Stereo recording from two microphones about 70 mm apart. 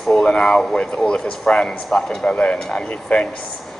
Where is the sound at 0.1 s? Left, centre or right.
Centre.